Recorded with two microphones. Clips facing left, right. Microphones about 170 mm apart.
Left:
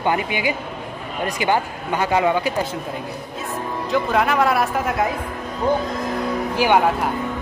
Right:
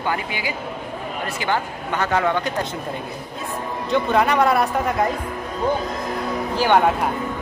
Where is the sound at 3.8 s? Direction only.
Centre (ahead or behind).